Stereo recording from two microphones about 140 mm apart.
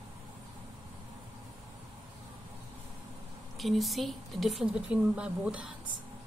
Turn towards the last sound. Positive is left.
turn(degrees=-10)  # may be behind; listen again after turning